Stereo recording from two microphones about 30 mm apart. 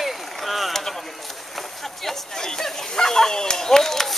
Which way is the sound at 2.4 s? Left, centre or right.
Centre.